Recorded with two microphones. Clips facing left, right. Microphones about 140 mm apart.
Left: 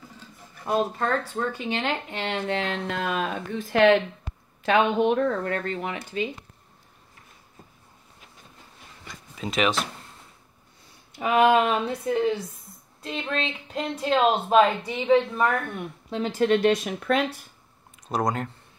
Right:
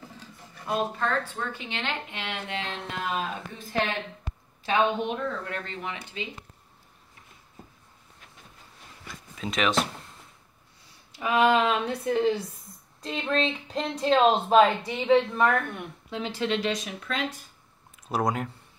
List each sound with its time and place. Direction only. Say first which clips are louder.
0.9 s speech: left 3 dB; 40° left (ahead or behind)
9.0 s a sound: left 1 dB; centre (ahead or behind)
11.1 s speech: left 3 dB; 20° left (ahead or behind)
11.5 s speech: left 2 dB; 40° left (ahead or behind)
11.9 s speech: even; 5° left (ahead or behind)
16.1 s speech: left 7 dB; 45° left (ahead or behind); by 17.3 s 60° left (ahead or behind)
18.0 s speech: left 1 dB; 5° right (ahead or behind)